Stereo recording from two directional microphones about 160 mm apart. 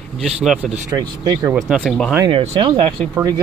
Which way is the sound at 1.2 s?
25° right (ahead or behind).